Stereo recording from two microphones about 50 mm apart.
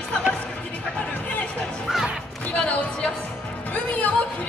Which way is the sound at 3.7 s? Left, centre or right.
Left.